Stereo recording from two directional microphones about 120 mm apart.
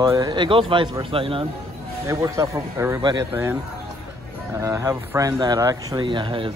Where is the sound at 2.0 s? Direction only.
30° right (ahead or behind).